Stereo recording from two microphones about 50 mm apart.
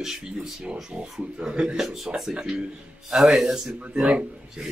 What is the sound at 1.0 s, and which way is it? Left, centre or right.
Speech, centre.